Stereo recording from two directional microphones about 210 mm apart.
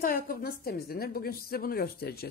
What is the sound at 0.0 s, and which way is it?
A woman's voice, 45° left (ahead or behind).